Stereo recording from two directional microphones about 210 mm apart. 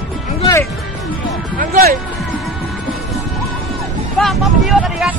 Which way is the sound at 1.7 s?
40° right (ahead or behind).